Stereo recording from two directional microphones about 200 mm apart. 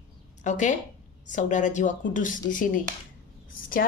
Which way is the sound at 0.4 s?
35° left (ahead or behind).